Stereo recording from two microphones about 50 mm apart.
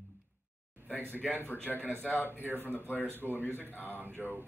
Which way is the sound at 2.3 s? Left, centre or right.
Right.